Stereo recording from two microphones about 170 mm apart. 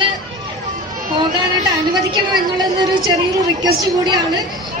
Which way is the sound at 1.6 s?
25° right (ahead or behind).